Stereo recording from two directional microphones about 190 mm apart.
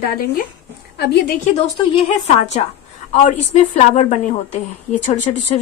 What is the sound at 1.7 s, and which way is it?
A woman's voice, 30° left (ahead or behind).